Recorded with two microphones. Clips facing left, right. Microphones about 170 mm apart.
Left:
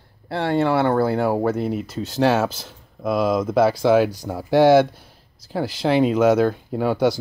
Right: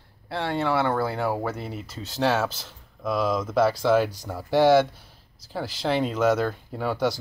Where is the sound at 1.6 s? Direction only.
5° left (ahead or behind).